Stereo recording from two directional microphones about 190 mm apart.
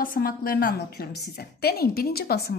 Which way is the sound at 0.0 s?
50° left (ahead or behind).